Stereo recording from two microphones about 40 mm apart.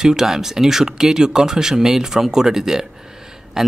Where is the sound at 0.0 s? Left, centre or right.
Centre.